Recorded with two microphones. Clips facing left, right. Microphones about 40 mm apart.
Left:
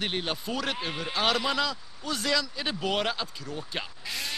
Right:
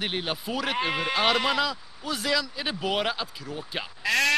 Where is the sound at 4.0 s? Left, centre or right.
Right.